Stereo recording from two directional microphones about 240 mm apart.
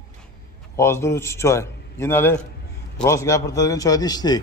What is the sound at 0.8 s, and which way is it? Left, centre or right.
A man's voice, centre.